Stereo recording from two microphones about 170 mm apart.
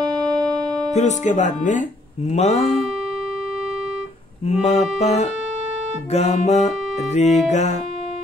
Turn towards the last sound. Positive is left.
turn(degrees=45)  # may be behind; listen again after turning